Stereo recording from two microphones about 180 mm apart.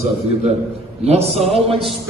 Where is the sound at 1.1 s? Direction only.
35° right (ahead or behind).